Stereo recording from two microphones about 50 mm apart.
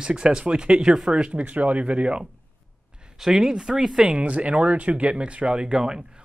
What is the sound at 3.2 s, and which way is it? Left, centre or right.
Speech, centre.